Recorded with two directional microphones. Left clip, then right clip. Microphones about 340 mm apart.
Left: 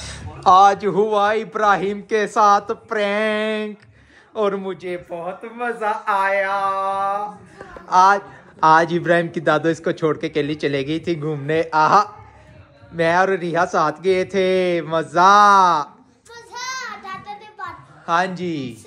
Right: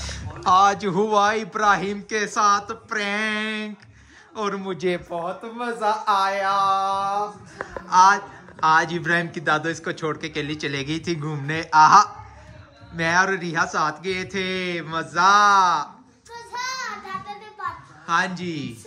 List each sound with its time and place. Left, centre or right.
0.0 s a man's voice: centre
4.7 s a man's voice: right
5.1 s speech: centre
7.9 s a man's voice: centre
16.5 s child singing: centre
17.6 s a sound: centre